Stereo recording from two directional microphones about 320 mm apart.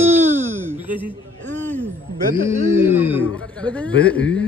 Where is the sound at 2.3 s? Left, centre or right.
Right.